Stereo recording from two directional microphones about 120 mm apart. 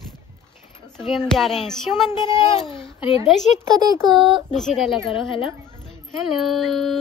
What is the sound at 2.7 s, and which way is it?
Speech, 45° left (ahead or behind).